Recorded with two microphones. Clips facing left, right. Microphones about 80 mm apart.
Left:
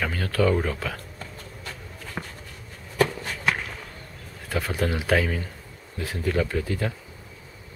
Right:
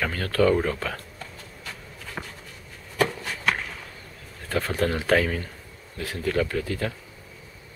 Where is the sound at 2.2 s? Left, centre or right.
Centre.